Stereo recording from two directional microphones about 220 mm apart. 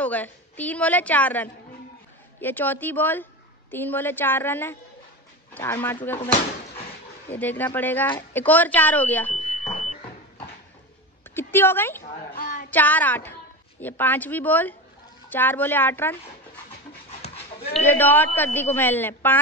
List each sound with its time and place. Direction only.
0.0 s a woman's voice: 5° left (ahead or behind)
7.2 s a woman's voice: 10° left (ahead or behind)
9.3 s smoke detector: 30° left (ahead or behind)
11.2 s speech: 10° left (ahead or behind)
12.0 s speech: 40° left (ahead or behind)
12.7 s a woman's voice: 10° left (ahead or behind)
17.2 s dog: 30° left (ahead or behind)
17.8 s a woman's voice: 10° left (ahead or behind)